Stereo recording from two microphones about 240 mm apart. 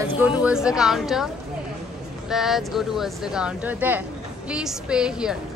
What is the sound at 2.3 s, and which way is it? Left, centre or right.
Speech, centre.